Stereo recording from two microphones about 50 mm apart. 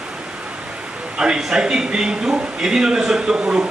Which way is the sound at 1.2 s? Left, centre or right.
Centre.